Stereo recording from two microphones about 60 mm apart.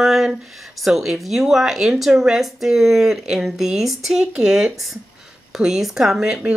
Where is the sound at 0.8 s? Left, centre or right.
Centre.